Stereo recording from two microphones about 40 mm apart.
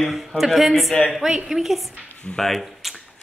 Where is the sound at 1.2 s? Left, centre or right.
Centre.